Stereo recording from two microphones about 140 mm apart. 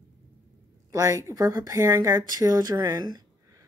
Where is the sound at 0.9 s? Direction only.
25° right (ahead or behind).